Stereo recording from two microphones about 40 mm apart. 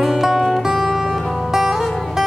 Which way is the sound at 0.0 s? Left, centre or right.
Centre.